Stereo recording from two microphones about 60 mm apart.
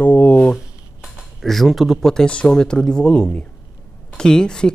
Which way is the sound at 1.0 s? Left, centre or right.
Centre.